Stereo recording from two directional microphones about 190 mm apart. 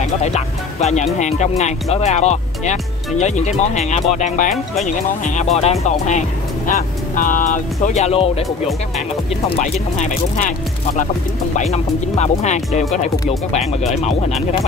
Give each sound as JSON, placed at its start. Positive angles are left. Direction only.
{"t": 0.0, "sound": "speech", "side_deg": 35}
{"t": 9.5, "sound": "speech", "side_deg": 40}
{"t": 11.7, "sound": "speech", "side_deg": 35}